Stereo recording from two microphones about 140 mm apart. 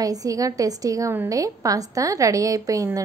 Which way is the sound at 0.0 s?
25° right (ahead or behind).